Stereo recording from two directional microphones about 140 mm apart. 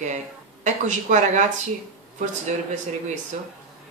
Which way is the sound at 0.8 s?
60° right (ahead or behind).